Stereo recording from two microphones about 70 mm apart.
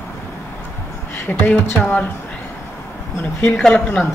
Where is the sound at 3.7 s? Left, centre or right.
Left.